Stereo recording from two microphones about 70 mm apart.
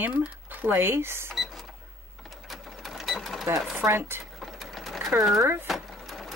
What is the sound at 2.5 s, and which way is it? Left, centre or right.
Sewing machine, centre.